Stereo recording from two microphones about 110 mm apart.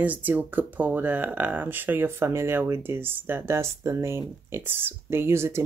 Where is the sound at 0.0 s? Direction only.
15° right (ahead or behind).